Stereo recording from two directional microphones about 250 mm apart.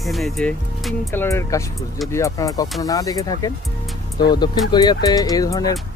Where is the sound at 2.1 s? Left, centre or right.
Centre.